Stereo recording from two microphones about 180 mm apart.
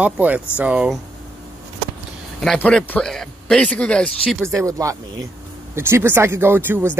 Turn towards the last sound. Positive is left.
turn(degrees=-10)  # may be behind; listen again after turning